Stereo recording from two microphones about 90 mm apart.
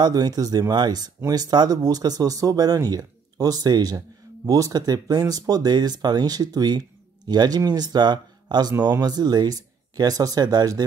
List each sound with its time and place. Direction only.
0.0 s speech: 45° right (ahead or behind)